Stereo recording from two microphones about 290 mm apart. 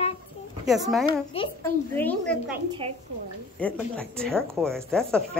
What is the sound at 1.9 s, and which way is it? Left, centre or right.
Speech, centre.